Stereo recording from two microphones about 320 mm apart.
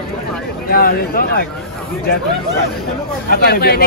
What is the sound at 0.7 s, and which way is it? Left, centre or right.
Speech, left.